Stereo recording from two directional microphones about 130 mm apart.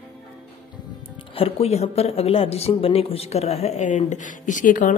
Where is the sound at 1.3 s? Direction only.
50° left (ahead or behind); by 4.9 s 85° left.